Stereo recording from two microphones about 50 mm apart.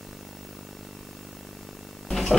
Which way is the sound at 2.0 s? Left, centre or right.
Centre.